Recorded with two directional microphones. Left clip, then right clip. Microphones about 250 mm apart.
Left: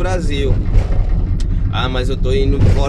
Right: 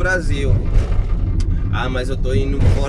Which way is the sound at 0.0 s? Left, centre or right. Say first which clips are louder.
Right 1 dB; centre.